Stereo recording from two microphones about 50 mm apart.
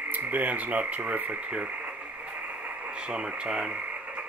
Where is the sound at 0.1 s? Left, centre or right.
Right.